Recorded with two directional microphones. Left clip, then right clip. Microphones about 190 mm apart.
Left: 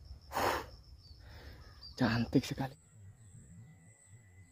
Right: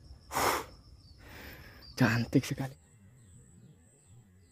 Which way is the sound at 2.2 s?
20° right (ahead or behind).